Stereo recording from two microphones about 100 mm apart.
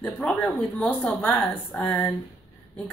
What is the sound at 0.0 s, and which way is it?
Speech, 15° left (ahead or behind).